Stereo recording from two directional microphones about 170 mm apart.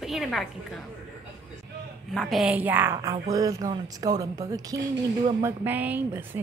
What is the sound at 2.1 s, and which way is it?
A woman's voice, centre (ahead or behind).